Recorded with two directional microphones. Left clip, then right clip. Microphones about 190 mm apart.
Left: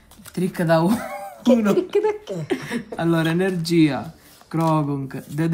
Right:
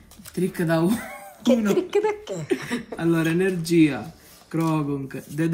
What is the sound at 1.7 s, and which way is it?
Speech, 10° left (ahead or behind).